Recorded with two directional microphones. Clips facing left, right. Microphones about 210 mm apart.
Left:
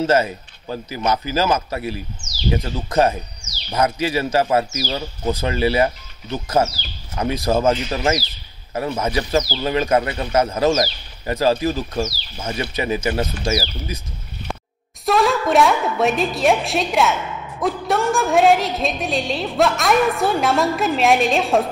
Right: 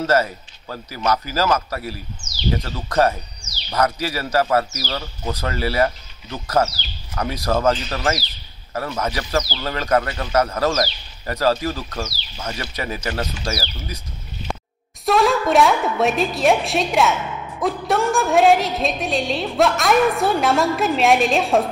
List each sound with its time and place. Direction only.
0.0 s a man's voice: 20° left (ahead or behind)
15.0 s a woman's voice: centre (ahead or behind)